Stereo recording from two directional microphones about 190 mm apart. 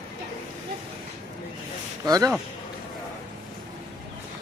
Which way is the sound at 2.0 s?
20° right (ahead or behind).